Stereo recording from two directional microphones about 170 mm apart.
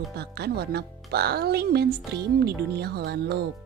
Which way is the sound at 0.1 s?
70° right (ahead or behind).